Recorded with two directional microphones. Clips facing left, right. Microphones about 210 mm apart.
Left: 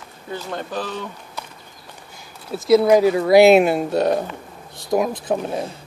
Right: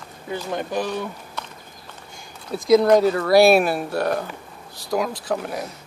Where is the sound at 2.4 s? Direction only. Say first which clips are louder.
Left 1 dB; 5° left (ahead or behind); by 5.7 s 25° left (ahead or behind).